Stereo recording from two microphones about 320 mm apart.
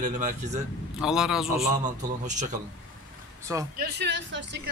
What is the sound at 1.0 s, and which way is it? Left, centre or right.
Speech, centre.